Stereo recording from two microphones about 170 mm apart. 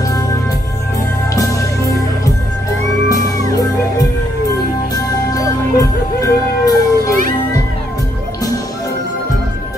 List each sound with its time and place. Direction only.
1.3 s music: 20° left (ahead or behind)
3.1 s music: 20° left (ahead or behind)